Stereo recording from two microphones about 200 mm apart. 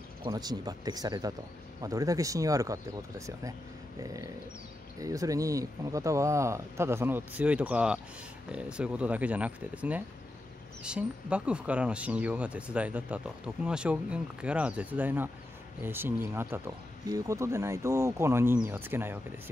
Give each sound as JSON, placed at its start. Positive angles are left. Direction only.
{"t": 0.3, "sound": "speech", "side_deg": -20}